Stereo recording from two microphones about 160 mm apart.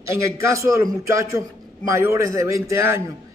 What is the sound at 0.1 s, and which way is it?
A man's voice, 20° right (ahead or behind).